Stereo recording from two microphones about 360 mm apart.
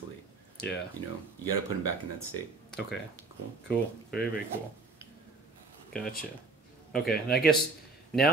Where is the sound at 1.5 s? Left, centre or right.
Left.